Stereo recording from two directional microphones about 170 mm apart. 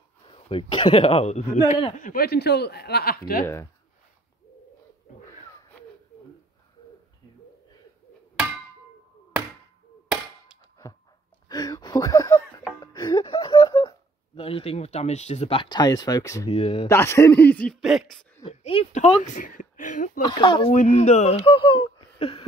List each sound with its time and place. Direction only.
0.3 s speech: 30° left (ahead or behind)
2.0 s speech: 55° left (ahead or behind)
11.4 s speech: 20° left (ahead or behind)
16.4 s speech: 35° left (ahead or behind)
16.8 s a man's voice: 15° left (ahead or behind)
17.7 s speech: centre (ahead or behind)
18.4 s speech: 35° left (ahead or behind)
19.3 s speech: 50° left (ahead or behind)
20.2 s speech: 25° left (ahead or behind)
20.7 s speech: 45° left (ahead or behind)